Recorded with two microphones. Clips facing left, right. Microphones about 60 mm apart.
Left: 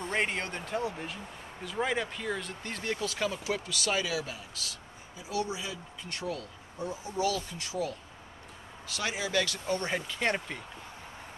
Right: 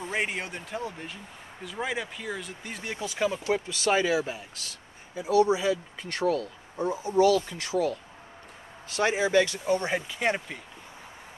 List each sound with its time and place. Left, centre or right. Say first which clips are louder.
0.0 s speech: right 1 dB; centre
3.5 s speech: right 6 dB; right
5.1 s speech: right 11 dB; right
5.4 s speech: right 12 dB; right
6.8 s speech: right 9 dB; right
8.8 s speech: right 8 dB; right; by 10.6 s centre